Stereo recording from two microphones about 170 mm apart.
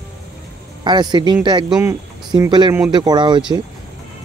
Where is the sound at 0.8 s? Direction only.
25° right (ahead or behind).